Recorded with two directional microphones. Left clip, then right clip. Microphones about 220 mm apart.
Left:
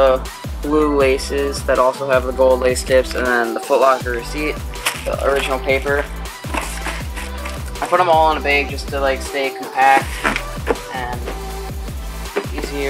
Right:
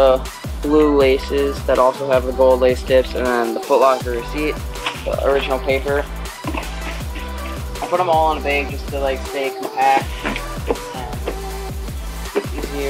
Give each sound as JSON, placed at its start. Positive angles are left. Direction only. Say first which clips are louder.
{"t": 0.7, "sound": "speech", "louder": "right 1 dB", "side_deg": 15}
{"t": 7.9, "sound": "speech", "louder": "left 3 dB", "side_deg": 15}
{"t": 10.7, "sound": "music", "louder": "left 2 dB", "side_deg": 15}
{"t": 12.4, "sound": "music", "louder": "right 1 dB", "side_deg": 15}